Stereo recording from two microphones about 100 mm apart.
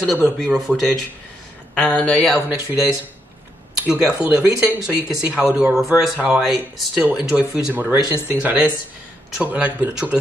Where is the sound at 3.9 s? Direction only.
10° right (ahead or behind).